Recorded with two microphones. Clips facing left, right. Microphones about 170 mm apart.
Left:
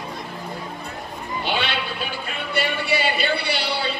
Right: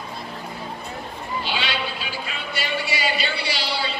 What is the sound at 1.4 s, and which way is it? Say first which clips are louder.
Speech: left 4 dB; 55° left (ahead or behind).